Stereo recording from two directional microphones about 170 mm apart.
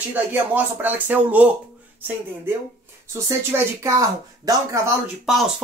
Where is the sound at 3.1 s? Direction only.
15° right (ahead or behind).